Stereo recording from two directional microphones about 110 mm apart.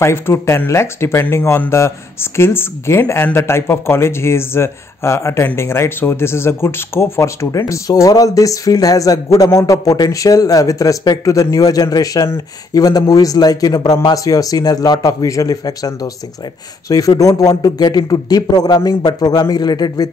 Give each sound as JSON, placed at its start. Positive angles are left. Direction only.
{"t": 0.0, "sound": "speech", "side_deg": 25}
{"t": 17.2, "sound": "a man's voice", "side_deg": 30}